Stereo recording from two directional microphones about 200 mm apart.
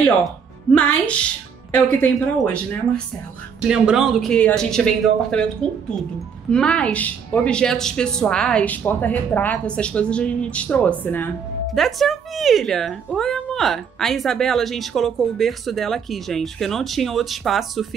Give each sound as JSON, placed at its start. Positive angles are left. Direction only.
{"t": 0.7, "sound": "speech", "side_deg": 5}
{"t": 3.6, "sound": "a woman's voice", "side_deg": -5}